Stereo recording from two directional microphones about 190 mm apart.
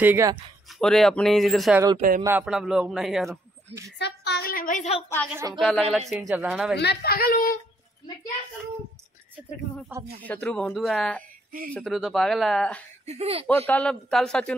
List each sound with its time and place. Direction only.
0.0 s speech: 15° right (ahead or behind)
0.7 s a man's voice: centre (ahead or behind)
2.0 s speech: 45° right (ahead or behind)
2.2 s a man's voice: 5° right (ahead or behind)
4.0 s a woman's voice: 60° left (ahead or behind); by 4.9 s 45° left (ahead or behind)
5.6 s a man's voice: 5° left (ahead or behind)
6.8 s a woman's voice: 60° left (ahead or behind)
10.2 s a man's voice: 10° left (ahead or behind)
13.0 s speech: 35° right (ahead or behind)
13.5 s a man's voice: 10° left (ahead or behind)